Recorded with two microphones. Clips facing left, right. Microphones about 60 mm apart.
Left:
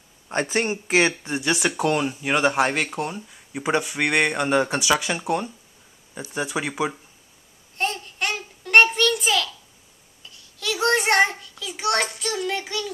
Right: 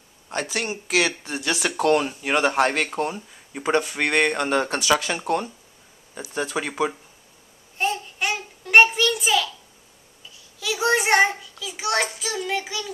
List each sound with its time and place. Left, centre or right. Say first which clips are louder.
0.3 s speech: left 4 dB; left
1.3 s speech: left 2 dB; centre
7.7 s a sound: right 2 dB; centre
10.3 s child singing: even; centre